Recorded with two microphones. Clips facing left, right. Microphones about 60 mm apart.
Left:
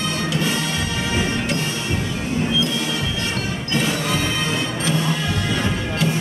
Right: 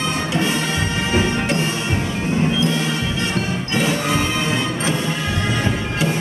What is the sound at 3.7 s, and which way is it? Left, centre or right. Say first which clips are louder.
Music: right 2 dB; right.